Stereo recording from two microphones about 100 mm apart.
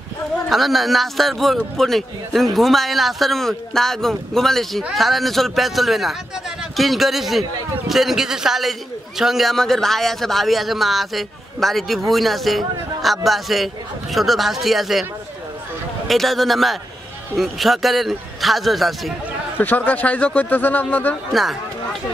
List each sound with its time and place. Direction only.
0.5 s a man's voice: centre (ahead or behind)
16.1 s a man's voice: centre (ahead or behind)
19.6 s a man's voice: 20° left (ahead or behind)
21.3 s a man's voice: centre (ahead or behind)